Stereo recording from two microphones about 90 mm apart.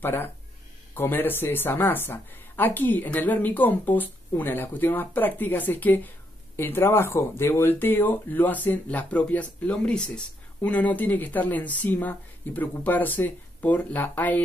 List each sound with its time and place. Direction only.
0.0 s speech: 25° left (ahead or behind)